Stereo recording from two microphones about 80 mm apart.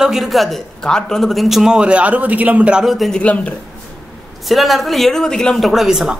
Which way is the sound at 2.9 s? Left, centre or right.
Centre.